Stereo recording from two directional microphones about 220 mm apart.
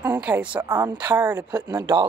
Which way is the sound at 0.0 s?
10° right (ahead or behind).